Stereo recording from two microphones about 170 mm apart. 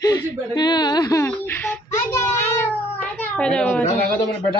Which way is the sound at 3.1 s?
10° left (ahead or behind).